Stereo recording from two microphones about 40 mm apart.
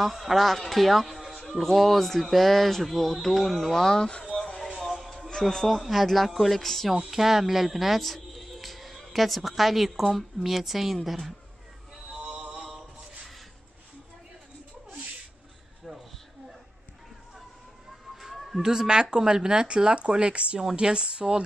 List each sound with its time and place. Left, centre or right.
0.0 s speech: centre
3.8 s speech: centre
4.4 s a sound: centre
4.7 s music: centre
5.4 s speech: centre
5.7 s speech: centre
7.1 s speech: centre
12.2 s music: right
18.1 s a sound: centre
18.6 s a woman's voice: centre